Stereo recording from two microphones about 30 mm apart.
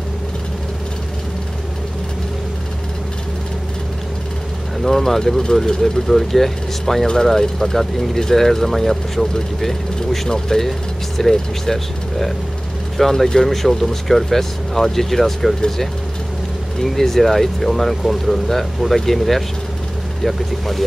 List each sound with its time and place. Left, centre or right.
4.8 s speech: centre
13.5 s speech: centre
16.8 s speech: centre